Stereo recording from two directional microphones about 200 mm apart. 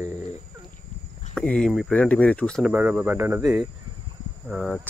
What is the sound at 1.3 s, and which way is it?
Speech, 5° left (ahead or behind).